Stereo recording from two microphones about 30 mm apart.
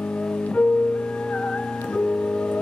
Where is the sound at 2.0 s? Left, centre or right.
Left.